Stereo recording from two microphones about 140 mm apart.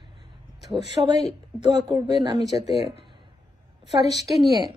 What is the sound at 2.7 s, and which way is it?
Speech, 45° left (ahead or behind).